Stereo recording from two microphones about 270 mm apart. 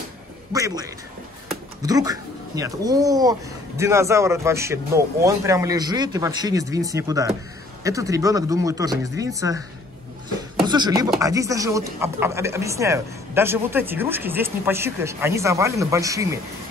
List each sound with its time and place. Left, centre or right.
0.5 s speech: centre
10.6 s speech: centre